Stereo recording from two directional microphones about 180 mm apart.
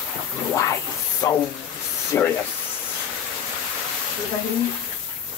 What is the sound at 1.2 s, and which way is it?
Speech, 15° left (ahead or behind).